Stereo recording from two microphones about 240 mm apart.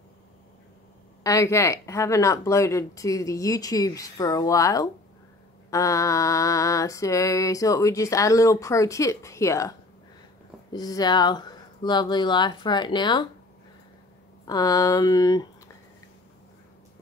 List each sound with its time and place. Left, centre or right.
1.2 s mantra: centre
14.4 s mantra: centre